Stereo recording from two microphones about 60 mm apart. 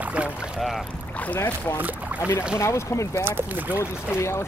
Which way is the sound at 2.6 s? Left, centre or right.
Left.